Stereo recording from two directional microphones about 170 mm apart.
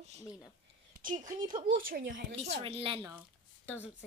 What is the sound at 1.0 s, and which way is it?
Speech, 50° right (ahead or behind).